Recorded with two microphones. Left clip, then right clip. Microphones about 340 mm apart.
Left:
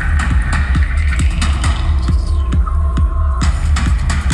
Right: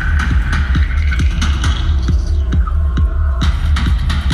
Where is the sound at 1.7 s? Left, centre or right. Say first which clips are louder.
Even; centre.